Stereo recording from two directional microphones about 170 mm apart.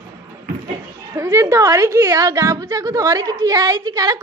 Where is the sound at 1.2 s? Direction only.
15° right (ahead or behind).